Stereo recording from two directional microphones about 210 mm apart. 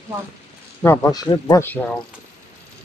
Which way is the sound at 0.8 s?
15° left (ahead or behind).